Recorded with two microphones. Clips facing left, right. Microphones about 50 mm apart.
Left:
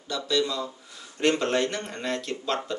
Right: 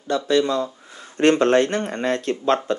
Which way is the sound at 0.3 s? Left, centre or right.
Right.